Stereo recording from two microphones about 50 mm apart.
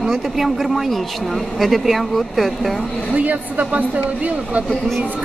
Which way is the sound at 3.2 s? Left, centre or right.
Right.